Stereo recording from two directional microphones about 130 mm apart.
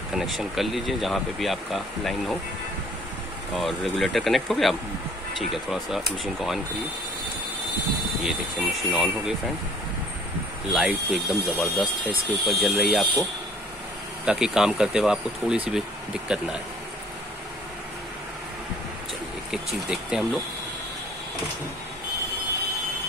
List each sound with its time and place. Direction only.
0.1 s speech: 5° right (ahead or behind)
3.5 s speech: centre (ahead or behind)
8.2 s speech: centre (ahead or behind)
10.7 s speech: 5° right (ahead or behind)
11.8 s speech: 40° right (ahead or behind)
12.4 s speech: 5° right (ahead or behind)
14.2 s speech: 5° right (ahead or behind)
19.5 s speech: 5° right (ahead or behind)